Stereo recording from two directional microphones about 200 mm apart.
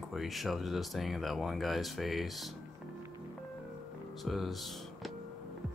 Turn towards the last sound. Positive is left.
turn(degrees=0)  # may be behind; listen again after turning